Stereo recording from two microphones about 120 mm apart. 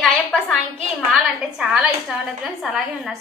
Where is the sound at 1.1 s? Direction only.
10° right (ahead or behind).